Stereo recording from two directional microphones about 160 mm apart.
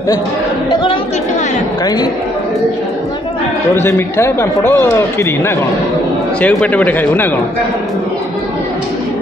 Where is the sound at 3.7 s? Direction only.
15° left (ahead or behind).